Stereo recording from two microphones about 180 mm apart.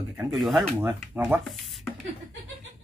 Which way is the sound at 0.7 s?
10° right (ahead or behind).